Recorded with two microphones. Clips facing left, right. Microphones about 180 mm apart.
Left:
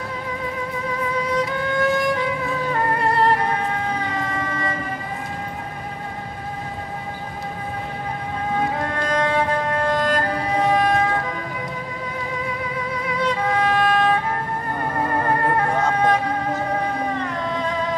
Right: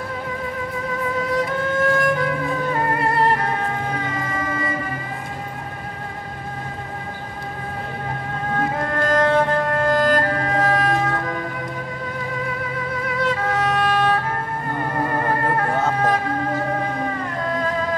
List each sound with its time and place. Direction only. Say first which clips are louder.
1.1 s music: right 1 dB; centre (ahead or behind)
4.1 s a sound: even; centre (ahead or behind)
8.5 s music: right 2 dB; centre (ahead or behind)
13.0 s music: even; centre (ahead or behind)
15.7 s music: left 1 dB; centre (ahead or behind)